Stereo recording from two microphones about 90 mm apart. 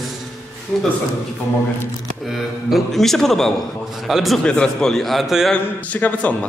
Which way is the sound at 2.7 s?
5° left (ahead or behind).